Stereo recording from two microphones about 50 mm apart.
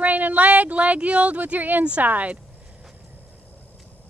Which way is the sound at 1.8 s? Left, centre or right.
Right.